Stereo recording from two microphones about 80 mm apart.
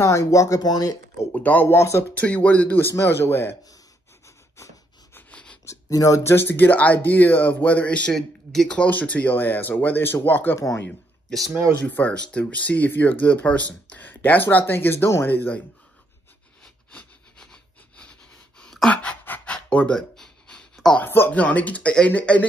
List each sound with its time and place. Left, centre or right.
0.0 s speech: left
1.3 s speech: centre
1.7 s speech: left
2.1 s speech: centre
5.3 s a sound: centre
5.7 s speech: left; by 8.1 s centre
8.1 s speech: centre; by 10.6 s left
11.2 s speech: centre
11.8 s speech: centre
15.2 s speech: left
16.6 s sawing: centre
18.9 s pant: centre
20.0 s a sound: centre
21.0 s speech: left